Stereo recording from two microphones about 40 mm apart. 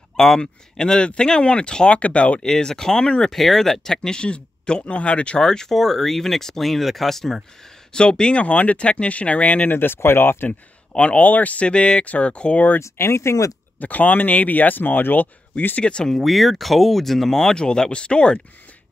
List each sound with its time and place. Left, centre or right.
0.4 s speech: left
2.0 s speech: left
2.4 s speech: centre
3.3 s speech: centre; by 5.4 s left
5.4 s speech: centre
7.9 s speech: centre
8.5 s speech: left
9.7 s speech: left
11.0 s speech: left
11.2 s speech: left
12.7 s speech: left
13.7 s speech: left
15.8 s speech: left
16.1 s speech: centre; by 18.4 s left